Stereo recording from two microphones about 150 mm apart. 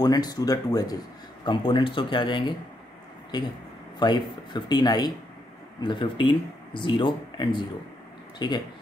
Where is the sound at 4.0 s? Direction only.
30° left (ahead or behind).